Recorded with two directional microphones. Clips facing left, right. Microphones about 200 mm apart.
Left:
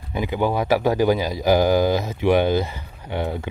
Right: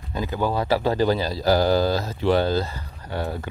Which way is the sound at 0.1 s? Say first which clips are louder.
Left 3 dB; 15° left (ahead or behind).